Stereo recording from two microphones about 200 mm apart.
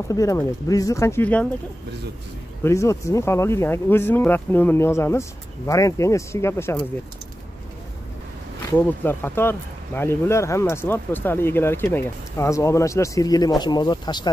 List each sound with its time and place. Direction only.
0.1 s speech: 15° left (ahead or behind)
2.6 s speech: 15° left (ahead or behind)
8.7 s speech: 10° left (ahead or behind)